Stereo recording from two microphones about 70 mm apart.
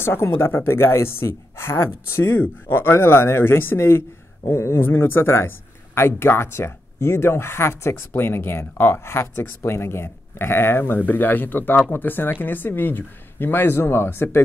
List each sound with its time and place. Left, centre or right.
0.0 s speech: left